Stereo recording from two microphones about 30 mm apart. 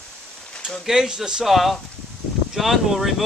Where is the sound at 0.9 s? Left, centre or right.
Right.